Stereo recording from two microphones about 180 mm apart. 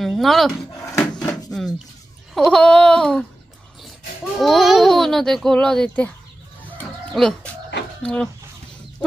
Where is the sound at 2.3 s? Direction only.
5° left (ahead or behind).